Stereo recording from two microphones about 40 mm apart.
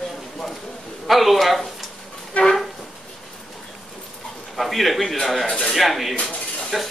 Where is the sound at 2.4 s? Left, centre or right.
Left.